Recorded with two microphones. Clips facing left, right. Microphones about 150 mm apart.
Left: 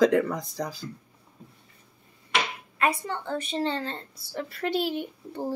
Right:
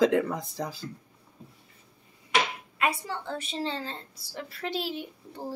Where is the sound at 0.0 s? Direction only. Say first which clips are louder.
Left 2 dB; 25° right (ahead or behind).